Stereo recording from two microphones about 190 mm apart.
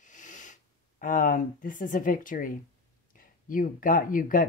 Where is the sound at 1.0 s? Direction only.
45° left (ahead or behind).